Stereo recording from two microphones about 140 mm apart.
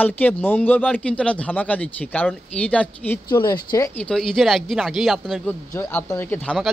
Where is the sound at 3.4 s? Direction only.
30° left (ahead or behind).